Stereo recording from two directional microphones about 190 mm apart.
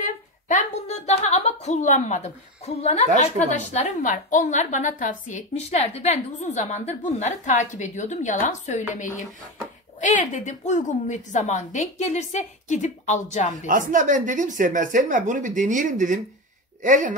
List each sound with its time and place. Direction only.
0.0 s a sound: 40° left (ahead or behind)
3.3 s a woman's voice: 35° left (ahead or behind)
13.7 s speech: 45° right (ahead or behind)